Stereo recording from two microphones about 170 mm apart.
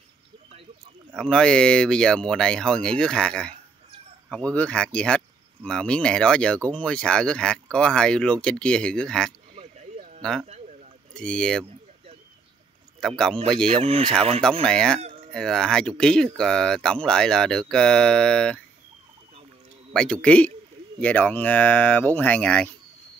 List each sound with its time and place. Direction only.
1.1 s speech: 5° left (ahead or behind)
9.6 s a sound: 40° right (ahead or behind)
11.1 s speech: 5° left (ahead or behind)
13.0 s speech: 5° left (ahead or behind)
13.8 s speech: 35° right (ahead or behind)
14.4 s speech: 5° left (ahead or behind)
19.9 s speech: 5° left (ahead or behind)